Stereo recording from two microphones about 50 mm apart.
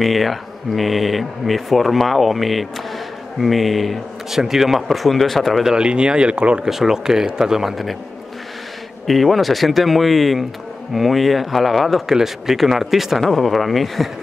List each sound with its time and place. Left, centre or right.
0.0 s speech: centre
5.6 s speech: centre
6.6 s speech: centre
9.0 s speech: centre